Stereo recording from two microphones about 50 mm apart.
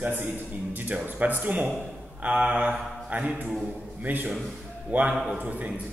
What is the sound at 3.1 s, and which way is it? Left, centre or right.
A man's voice, right.